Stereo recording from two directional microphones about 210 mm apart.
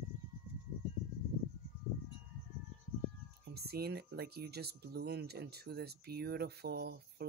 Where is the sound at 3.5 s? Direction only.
50° right (ahead or behind).